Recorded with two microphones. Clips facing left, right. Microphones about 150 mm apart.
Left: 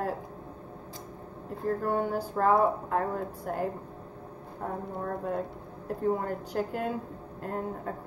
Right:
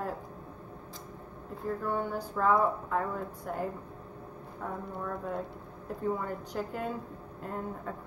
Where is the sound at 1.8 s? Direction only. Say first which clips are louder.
Left 3 dB; 35° left (ahead or behind).